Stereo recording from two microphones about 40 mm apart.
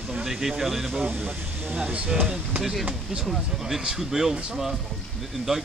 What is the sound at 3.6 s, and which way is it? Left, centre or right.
Speech, centre.